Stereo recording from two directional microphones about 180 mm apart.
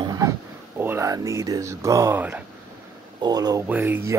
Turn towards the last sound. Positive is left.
turn(degrees=-15)  # may be behind; listen again after turning